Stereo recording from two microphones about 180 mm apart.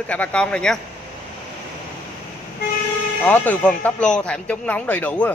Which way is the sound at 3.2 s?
10° left (ahead or behind).